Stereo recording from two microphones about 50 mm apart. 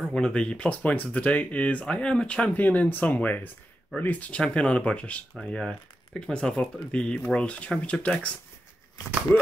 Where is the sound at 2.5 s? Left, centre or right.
Left.